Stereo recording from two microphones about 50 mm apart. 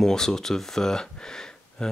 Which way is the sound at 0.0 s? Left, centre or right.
Centre.